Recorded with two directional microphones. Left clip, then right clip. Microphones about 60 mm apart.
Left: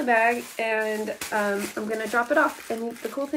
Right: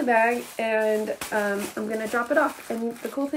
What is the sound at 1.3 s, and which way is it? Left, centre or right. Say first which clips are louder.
Speech: left 1 dB; right.